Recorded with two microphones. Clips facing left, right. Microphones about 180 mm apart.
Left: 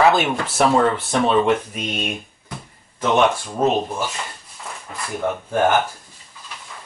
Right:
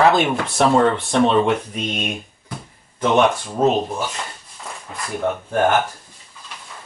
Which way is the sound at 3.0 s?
Centre (ahead or behind).